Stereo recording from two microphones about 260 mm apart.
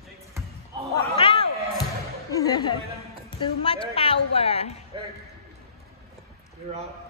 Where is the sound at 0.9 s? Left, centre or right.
Centre.